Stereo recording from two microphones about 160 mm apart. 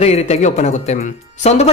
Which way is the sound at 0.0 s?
45° left (ahead or behind).